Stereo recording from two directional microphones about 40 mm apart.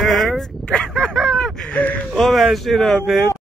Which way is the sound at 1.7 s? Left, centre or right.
Left.